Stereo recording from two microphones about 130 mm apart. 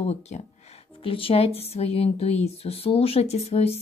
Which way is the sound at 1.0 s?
45° left (ahead or behind).